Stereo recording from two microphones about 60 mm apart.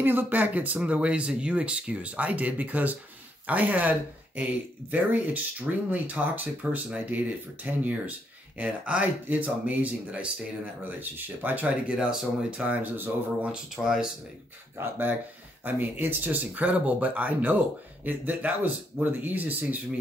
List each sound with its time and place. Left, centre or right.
0.0 s speech: right
11.9 s speech: centre
12.6 s speech: right
13.8 s speech: centre
14.8 s speech: right